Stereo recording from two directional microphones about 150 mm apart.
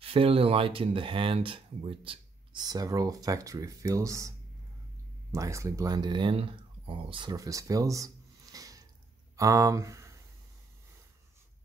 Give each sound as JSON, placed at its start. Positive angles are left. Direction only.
{"t": 0.0, "sound": "speech", "side_deg": -40}
{"t": 5.3, "sound": "speech", "side_deg": -20}
{"t": 7.3, "sound": "a sound", "side_deg": -20}
{"t": 9.4, "sound": "speech", "side_deg": -20}